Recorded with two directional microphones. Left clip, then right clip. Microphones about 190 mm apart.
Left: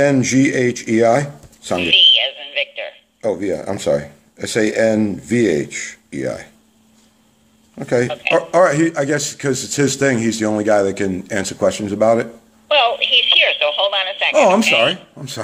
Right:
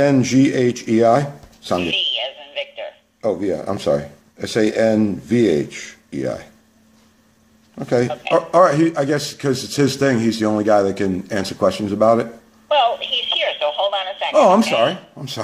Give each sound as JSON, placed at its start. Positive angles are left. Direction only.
{"t": 0.0, "sound": "speech", "side_deg": 5}
{"t": 1.8, "sound": "a sound", "side_deg": 20}
{"t": 3.2, "sound": "speech", "side_deg": 5}
{"t": 7.7, "sound": "speech", "side_deg": 5}
{"t": 8.1, "sound": "speech", "side_deg": 20}
{"t": 8.4, "sound": "a man's voice", "side_deg": 5}
{"t": 12.6, "sound": "telephone", "side_deg": 20}
{"t": 14.6, "sound": "speech", "side_deg": 20}